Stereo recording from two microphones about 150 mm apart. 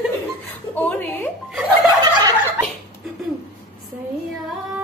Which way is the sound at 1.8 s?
25° right (ahead or behind).